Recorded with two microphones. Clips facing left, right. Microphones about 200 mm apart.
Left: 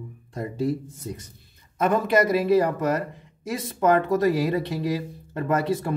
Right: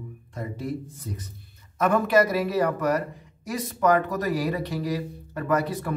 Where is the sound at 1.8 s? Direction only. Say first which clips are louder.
Even; 25° left (ahead or behind).